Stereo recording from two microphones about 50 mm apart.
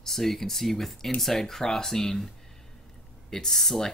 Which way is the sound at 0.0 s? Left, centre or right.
Centre.